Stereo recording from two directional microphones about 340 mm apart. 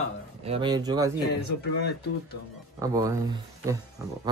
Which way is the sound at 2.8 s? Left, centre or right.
Centre.